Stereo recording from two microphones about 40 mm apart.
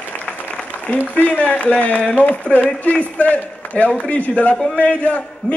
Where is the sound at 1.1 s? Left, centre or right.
Left.